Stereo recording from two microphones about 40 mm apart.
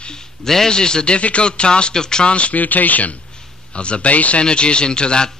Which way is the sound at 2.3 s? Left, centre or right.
Left.